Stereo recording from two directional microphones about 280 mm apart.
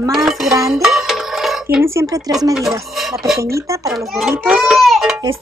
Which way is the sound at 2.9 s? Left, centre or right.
Centre.